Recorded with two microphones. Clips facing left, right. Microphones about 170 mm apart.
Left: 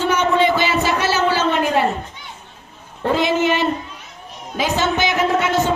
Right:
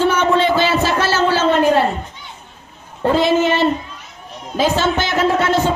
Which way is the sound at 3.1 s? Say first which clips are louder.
Right 3 dB; 15° left (ahead or behind).